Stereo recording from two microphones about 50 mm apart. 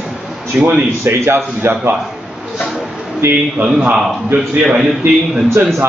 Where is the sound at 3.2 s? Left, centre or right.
Right.